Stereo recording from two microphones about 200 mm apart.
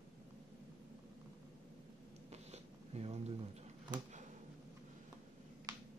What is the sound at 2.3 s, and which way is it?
Zipper, 30° right (ahead or behind).